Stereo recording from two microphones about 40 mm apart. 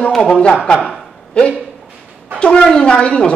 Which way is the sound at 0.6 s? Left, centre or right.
Centre.